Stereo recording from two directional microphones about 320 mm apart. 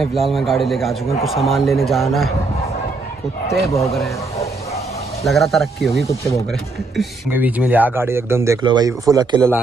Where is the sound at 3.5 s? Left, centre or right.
Centre.